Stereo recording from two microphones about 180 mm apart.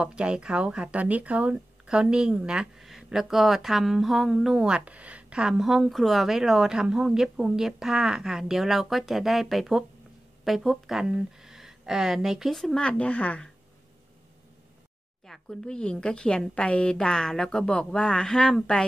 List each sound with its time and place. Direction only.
0.0 s speech: 5° right (ahead or behind)
15.2 s speech: centre (ahead or behind)